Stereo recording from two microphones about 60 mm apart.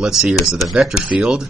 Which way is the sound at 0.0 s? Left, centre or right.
Centre.